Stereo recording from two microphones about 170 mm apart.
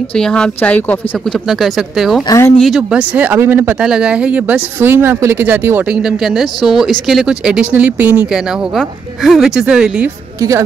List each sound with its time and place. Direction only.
0.1 s speech: 5° left (ahead or behind)
1.5 s speech: 5° right (ahead or behind)
2.2 s speech: 20° left (ahead or behind)
2.6 s speech: 5° right (ahead or behind)